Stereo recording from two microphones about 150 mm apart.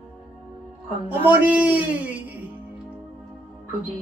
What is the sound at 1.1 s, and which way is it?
Speech, 10° right (ahead or behind).